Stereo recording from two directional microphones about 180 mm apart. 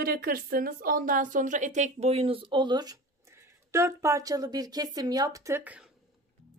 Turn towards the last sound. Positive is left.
turn(degrees=-5)  # may be behind; listen again after turning